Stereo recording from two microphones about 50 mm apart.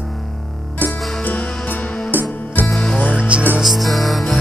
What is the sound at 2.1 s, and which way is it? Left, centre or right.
Music, right.